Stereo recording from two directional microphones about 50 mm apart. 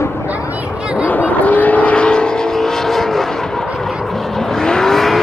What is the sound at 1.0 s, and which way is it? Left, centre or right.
Vehicle, left.